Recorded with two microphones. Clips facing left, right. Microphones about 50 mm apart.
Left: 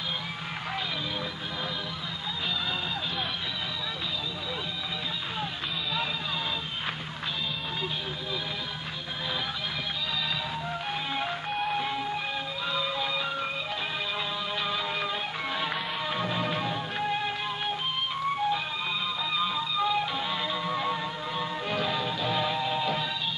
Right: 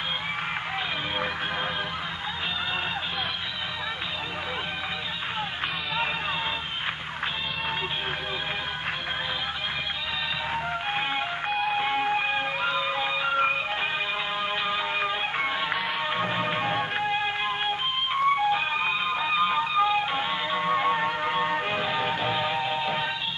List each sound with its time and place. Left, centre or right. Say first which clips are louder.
10.5 s music: right 4 dB; right
14.7 s music: right 3 dB; right
21.2 s music: right 7 dB; right
21.7 s music: right 2 dB; right
22.0 s music: right 4 dB; right
22.3 s music: right 2 dB; right